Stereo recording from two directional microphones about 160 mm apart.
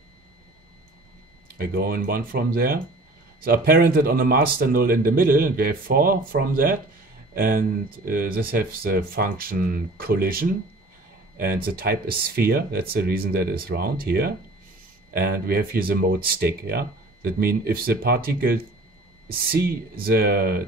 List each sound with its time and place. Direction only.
1.6 s speech: 70° right (ahead or behind)